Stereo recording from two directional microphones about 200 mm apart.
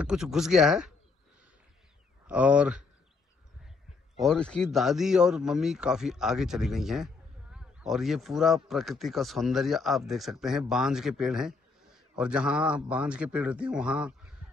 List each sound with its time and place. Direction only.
0.0 s speech: 5° right (ahead or behind)
2.2 s speech: 5° right (ahead or behind)
4.2 s speech: 5° left (ahead or behind)